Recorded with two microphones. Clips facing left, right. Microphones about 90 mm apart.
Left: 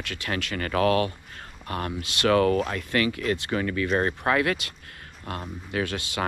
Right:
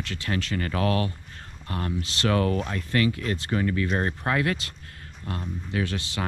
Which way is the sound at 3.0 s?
35° right (ahead or behind).